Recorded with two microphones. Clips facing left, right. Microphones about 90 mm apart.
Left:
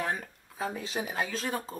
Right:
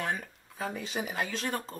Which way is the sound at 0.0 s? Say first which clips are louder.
Left 1 dB; centre (ahead or behind).